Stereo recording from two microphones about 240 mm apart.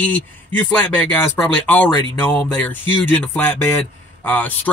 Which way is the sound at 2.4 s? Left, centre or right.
Centre.